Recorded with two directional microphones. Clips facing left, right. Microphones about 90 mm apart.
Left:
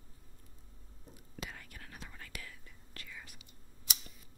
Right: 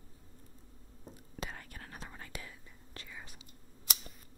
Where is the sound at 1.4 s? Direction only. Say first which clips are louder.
Right 3 dB; 35° right (ahead or behind).